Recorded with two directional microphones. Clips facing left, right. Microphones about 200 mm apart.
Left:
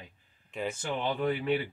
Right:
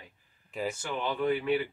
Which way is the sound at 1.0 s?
25° left (ahead or behind).